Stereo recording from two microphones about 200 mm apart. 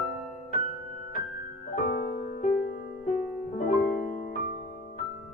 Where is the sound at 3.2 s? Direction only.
45° left (ahead or behind).